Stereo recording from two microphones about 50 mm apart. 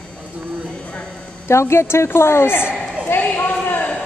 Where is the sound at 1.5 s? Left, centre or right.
Left.